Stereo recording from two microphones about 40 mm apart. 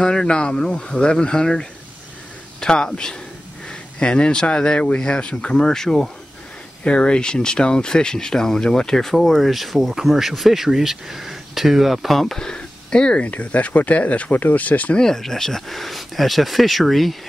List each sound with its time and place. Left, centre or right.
0.0 s speech: centre
6.8 s speech: left; by 12.4 s centre
12.4 s speech: centre
13.2 s speech: left
15.0 s speech: centre